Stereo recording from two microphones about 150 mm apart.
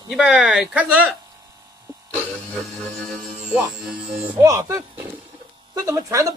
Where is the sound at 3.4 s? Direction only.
5° right (ahead or behind).